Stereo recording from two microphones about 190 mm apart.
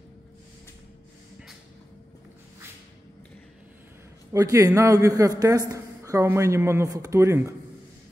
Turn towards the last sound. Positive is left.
turn(degrees=-15)  # may be behind; listen again after turning